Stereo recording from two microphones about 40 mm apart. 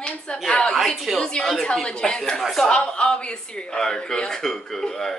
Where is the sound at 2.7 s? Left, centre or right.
Left.